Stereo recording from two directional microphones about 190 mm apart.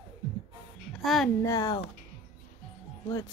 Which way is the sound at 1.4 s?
20° left (ahead or behind).